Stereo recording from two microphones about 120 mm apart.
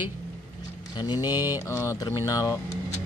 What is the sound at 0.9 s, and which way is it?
Speech, 35° left (ahead or behind).